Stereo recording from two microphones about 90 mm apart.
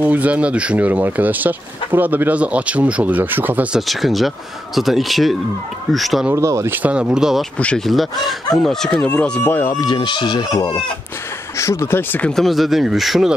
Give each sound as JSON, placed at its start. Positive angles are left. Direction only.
{"t": 0.0, "sound": "speech", "side_deg": -15}
{"t": 3.7, "sound": "speech", "side_deg": 0}
{"t": 6.3, "sound": "speech", "side_deg": -35}
{"t": 6.7, "sound": "speech", "side_deg": -15}
{"t": 7.5, "sound": "speech", "side_deg": 15}
{"t": 7.8, "sound": "speech", "side_deg": 0}
{"t": 8.9, "sound": "speech", "side_deg": 15}
{"t": 9.7, "sound": "speech", "side_deg": 55}
{"t": 11.5, "sound": "speech", "side_deg": 35}
{"t": 12.3, "sound": "speech", "side_deg": 0}